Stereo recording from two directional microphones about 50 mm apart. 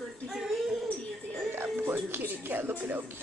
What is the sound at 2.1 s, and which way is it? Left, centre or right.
Speech, right.